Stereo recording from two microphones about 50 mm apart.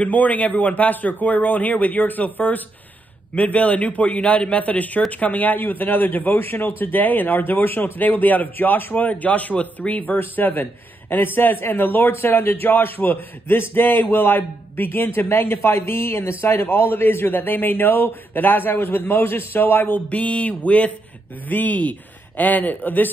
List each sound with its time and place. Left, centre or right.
0.0 s a man's voice: left
8.9 s a man's voice: left
10.1 s a man's voice: left
15.2 s a man's voice: left
20.1 s a man's voice: left